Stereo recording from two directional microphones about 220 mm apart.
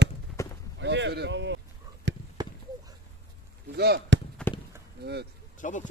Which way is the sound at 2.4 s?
20° right (ahead or behind).